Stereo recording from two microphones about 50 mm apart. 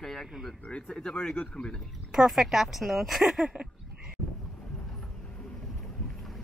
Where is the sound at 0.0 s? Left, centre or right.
Centre.